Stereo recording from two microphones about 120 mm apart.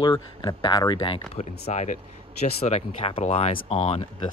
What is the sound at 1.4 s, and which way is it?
Speech, 70° left (ahead or behind).